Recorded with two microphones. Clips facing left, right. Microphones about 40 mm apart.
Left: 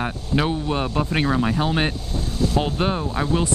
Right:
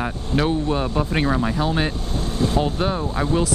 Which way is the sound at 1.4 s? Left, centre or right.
Centre.